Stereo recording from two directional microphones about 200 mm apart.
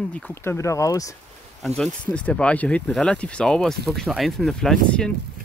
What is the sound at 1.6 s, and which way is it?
Speech, centre (ahead or behind).